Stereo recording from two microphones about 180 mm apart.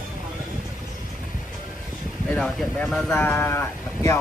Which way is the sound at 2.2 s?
5° left (ahead or behind).